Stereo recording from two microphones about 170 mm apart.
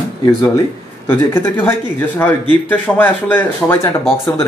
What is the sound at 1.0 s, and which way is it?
A man's voice, 15° left (ahead or behind).